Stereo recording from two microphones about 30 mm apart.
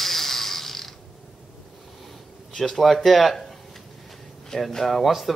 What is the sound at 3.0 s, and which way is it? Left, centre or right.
Speech, centre.